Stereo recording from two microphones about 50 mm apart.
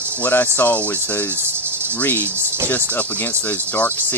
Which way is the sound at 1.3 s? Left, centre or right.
Right.